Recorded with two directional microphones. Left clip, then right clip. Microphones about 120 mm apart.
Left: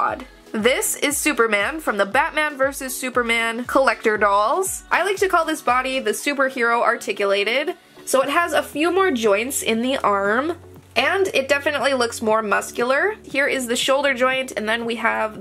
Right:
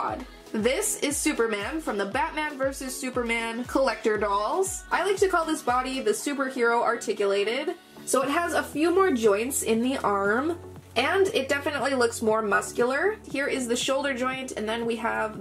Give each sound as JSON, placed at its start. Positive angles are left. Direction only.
{"t": 0.5, "sound": "speech", "side_deg": 40}